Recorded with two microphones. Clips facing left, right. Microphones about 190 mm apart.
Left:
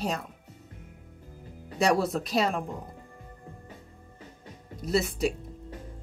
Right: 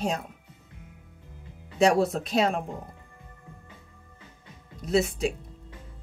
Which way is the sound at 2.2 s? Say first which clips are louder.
Right 2 dB; centre (ahead or behind).